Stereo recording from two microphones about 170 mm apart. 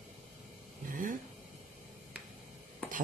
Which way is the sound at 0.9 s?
55° right (ahead or behind).